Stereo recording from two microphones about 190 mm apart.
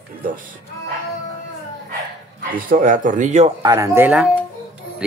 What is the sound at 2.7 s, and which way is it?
Speech, 45° right (ahead or behind).